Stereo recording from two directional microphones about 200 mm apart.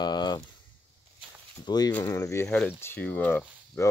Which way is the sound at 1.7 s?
20° left (ahead or behind).